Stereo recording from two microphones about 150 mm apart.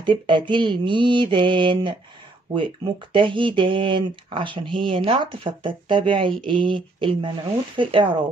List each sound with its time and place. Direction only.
0.0 s speech: 30° right (ahead or behind)